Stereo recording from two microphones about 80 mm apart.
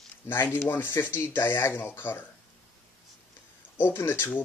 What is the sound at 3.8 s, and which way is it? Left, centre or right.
Speech, left.